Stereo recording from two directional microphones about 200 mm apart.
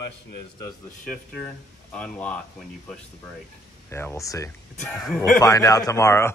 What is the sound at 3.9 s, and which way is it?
Speech, 15° left (ahead or behind).